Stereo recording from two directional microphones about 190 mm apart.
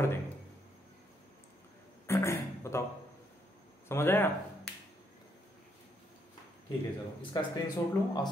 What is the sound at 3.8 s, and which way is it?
Speech, 10° left (ahead or behind).